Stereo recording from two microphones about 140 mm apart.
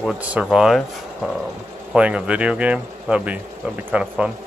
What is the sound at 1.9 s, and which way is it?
Speech, 10° right (ahead or behind).